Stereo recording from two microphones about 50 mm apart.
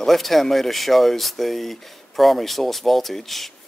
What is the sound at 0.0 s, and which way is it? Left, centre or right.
Speech, centre.